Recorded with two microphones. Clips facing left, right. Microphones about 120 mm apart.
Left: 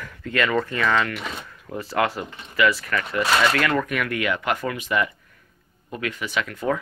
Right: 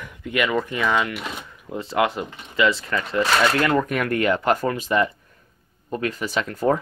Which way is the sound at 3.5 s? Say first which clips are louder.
Right 2 dB; 25° right (ahead or behind).